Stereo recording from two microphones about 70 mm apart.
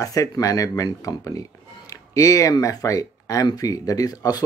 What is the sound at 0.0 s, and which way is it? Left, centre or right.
Speech, left.